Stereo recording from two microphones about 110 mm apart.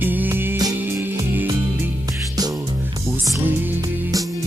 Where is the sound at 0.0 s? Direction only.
15° right (ahead or behind).